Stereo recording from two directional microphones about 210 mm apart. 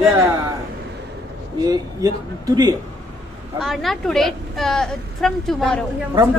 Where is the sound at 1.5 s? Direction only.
20° right (ahead or behind).